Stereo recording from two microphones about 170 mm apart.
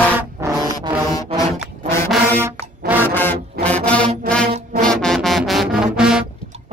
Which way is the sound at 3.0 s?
10° left (ahead or behind).